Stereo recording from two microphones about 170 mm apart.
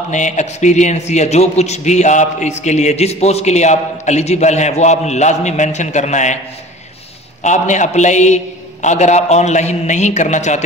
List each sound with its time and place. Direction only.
0.1 s a man's voice: 45° left (ahead or behind)
7.4 s a man's voice: 45° left (ahead or behind)